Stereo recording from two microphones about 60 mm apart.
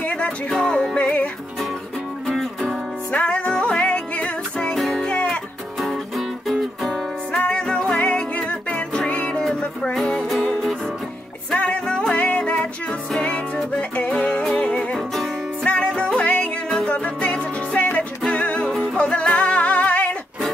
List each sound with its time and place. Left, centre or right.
0.0 s music: left
2.2 s music: centre
3.1 s music: centre
4.7 s music: centre
5.0 s music: centre
5.8 s music: centre
7.3 s music: centre
9.9 s music: centre
11.5 s music: centre
15.0 s music: centre
15.6 s music: centre